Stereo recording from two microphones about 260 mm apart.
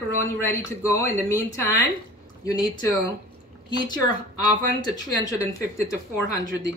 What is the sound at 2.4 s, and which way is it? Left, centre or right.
Speech, centre.